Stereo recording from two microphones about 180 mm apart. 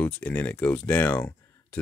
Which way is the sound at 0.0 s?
10° left (ahead or behind).